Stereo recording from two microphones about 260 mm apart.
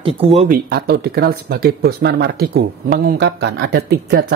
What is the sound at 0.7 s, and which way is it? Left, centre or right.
Speech, right.